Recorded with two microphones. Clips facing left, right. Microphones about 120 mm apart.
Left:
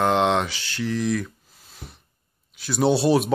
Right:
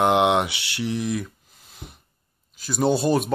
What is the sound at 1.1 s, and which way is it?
Speech, 5° right (ahead or behind).